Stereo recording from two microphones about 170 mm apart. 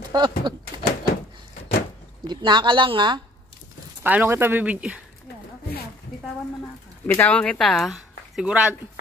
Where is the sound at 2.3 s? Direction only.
25° right (ahead or behind).